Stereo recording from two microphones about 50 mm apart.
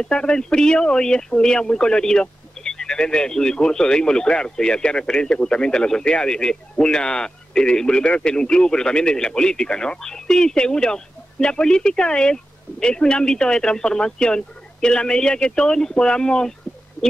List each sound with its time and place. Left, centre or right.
0.0 s a man's voice: centre